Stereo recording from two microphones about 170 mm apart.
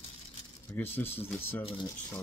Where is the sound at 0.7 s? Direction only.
10° left (ahead or behind).